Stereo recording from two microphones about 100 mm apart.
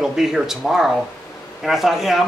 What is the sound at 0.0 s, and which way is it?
Speech, 5° right (ahead or behind).